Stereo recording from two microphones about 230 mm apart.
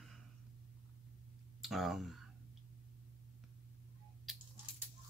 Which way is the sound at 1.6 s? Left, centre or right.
Centre.